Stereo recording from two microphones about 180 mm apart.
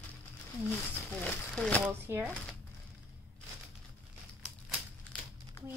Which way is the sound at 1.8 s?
10° right (ahead or behind).